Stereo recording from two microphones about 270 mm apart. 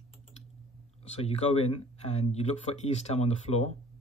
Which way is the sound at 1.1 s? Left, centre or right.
Left.